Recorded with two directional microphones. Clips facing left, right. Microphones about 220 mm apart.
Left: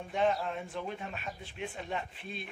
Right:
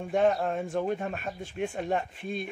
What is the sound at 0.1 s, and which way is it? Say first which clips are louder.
A man's voice: right 6 dB; 50° right (ahead or behind).